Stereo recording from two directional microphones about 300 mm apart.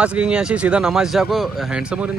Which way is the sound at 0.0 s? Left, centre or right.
Centre.